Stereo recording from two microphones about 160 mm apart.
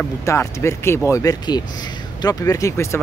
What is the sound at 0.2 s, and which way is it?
Speech, 20° left (ahead or behind).